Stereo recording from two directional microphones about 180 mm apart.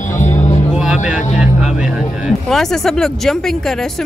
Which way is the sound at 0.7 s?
5° right (ahead or behind).